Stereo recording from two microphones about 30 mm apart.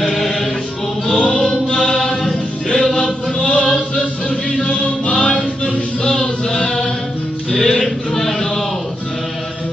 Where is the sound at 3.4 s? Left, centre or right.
Left.